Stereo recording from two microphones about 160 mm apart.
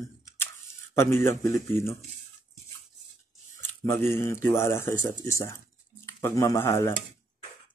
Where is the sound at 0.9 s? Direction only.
15° left (ahead or behind).